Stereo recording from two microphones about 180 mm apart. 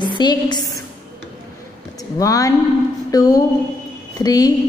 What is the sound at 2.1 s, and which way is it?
A woman's voice, 20° left (ahead or behind).